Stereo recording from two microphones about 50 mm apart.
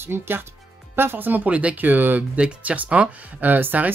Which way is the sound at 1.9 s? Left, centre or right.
Right.